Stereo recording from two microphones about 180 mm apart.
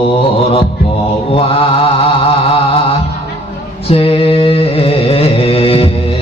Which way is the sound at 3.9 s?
30° left (ahead or behind).